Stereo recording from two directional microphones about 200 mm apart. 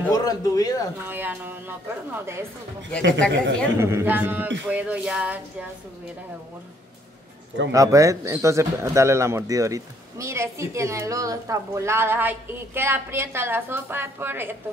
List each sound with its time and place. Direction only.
0.1 s a man's voice: 20° left (ahead or behind)
1.0 s speech: 10° right (ahead or behind)
3.0 s speech: 65° right (ahead or behind)
3.8 s speech: 10° right (ahead or behind)
7.7 s speech: 15° right (ahead or behind)